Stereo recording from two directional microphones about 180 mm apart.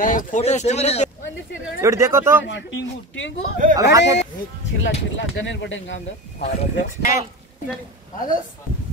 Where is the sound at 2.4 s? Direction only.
90° left.